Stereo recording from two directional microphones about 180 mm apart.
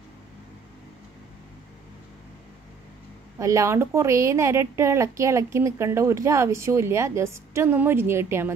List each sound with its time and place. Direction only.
3.3 s a woman's voice: 15° right (ahead or behind)